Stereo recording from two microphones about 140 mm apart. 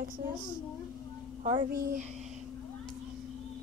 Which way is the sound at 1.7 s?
90° right.